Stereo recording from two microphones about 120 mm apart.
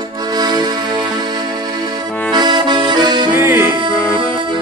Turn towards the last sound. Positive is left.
turn(degrees=-20)  # may be behind; listen again after turning